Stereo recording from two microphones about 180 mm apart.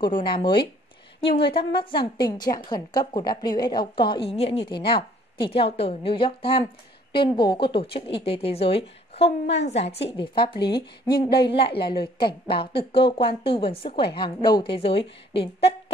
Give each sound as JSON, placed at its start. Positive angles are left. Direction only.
{"t": 0.0, "sound": "speech", "side_deg": 25}
{"t": 10.6, "sound": "speech", "side_deg": 60}
{"t": 11.7, "sound": "speech", "side_deg": 30}